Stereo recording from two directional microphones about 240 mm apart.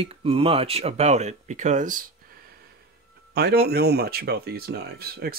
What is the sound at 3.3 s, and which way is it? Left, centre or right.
Speech, right.